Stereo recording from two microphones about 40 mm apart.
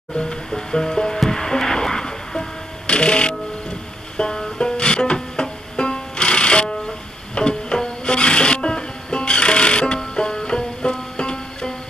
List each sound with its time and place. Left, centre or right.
0.5 s music: centre
2.9 s music: left